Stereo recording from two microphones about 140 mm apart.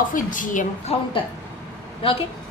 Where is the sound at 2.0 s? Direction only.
40° left (ahead or behind).